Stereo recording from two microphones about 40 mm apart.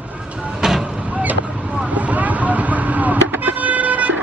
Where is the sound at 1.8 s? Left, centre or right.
Right.